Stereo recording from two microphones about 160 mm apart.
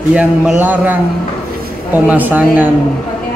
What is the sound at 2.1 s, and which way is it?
Speech, 10° right (ahead or behind).